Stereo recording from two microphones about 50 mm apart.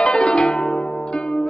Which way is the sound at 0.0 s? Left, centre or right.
Centre.